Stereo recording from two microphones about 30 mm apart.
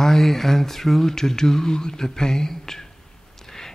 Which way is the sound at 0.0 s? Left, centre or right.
Centre.